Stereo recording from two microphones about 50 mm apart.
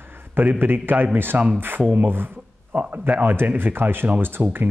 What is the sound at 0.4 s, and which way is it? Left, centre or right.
Speech, right.